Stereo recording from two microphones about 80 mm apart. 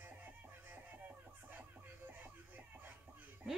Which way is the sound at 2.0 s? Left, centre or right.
Right.